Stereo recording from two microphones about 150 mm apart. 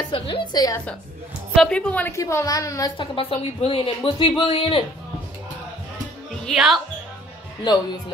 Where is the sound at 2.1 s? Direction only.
20° left (ahead or behind).